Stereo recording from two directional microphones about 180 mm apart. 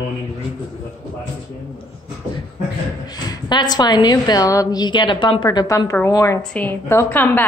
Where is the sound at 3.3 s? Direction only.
25° left (ahead or behind).